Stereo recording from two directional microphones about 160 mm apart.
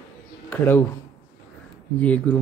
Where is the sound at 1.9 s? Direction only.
10° left (ahead or behind).